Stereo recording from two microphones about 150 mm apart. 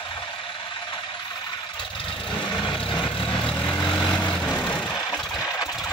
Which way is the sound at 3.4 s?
10° left (ahead or behind).